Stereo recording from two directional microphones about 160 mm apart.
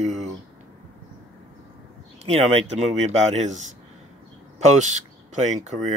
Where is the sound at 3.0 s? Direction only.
45° right (ahead or behind).